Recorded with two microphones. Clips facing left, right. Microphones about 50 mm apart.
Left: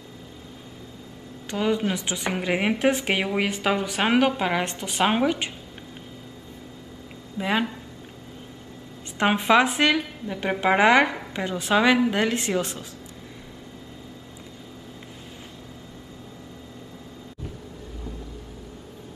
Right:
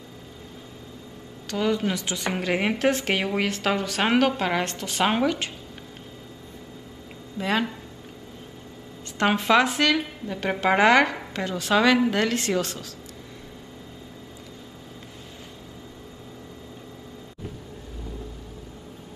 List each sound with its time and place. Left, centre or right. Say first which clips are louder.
1.5 s a woman's voice: even; centre
7.3 s speech: even; centre
9.2 s a woman's voice: left 1 dB; centre
9.9 s a woman's voice: even; centre